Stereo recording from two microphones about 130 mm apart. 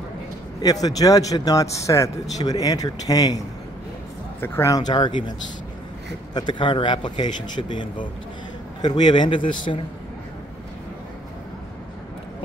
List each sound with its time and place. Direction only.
0.6 s a man's voice: 30° left (ahead or behind)
6.3 s speech: 35° left (ahead or behind)